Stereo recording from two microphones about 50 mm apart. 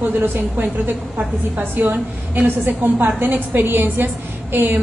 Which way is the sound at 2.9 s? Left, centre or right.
Right.